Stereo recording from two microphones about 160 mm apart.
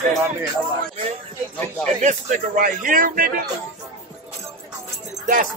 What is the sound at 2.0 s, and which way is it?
Speech, 55° right (ahead or behind).